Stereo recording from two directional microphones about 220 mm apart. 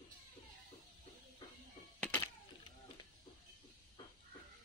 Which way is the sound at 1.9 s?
10° left (ahead or behind).